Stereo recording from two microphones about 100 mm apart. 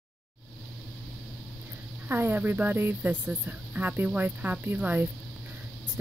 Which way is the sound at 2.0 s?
20° right (ahead or behind).